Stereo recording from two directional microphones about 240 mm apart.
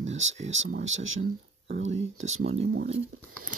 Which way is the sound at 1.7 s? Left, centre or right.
Right.